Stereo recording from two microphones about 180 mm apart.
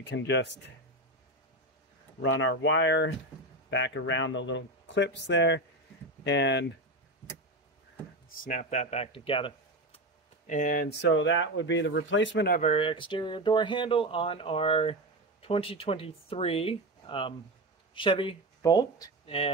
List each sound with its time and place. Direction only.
0.0 s speech: 75° left (ahead or behind)
2.2 s speech: 90° left; by 6.6 s 70° left (ahead or behind)
8.3 s speech: 45° left (ahead or behind); by 9.5 s 30° left (ahead or behind)
9.9 s speech: 45° left (ahead or behind); by 12.5 s 80° left
12.5 s speech: 35° left (ahead or behind); by 19.0 s 20° left (ahead or behind)
19.2 s speech: 35° left (ahead or behind)